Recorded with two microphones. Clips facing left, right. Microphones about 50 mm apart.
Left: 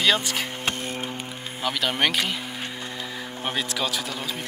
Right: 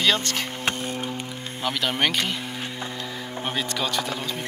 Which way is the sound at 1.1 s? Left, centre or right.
Centre.